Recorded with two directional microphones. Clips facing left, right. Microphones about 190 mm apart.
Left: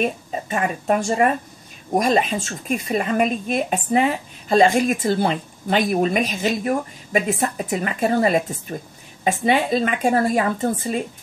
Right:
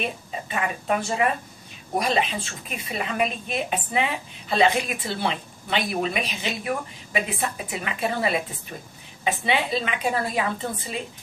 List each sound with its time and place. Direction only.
0.0 s speech: 45° left (ahead or behind)